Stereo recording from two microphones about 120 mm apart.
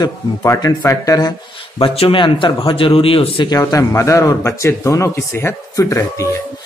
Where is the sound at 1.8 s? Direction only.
50° left (ahead or behind).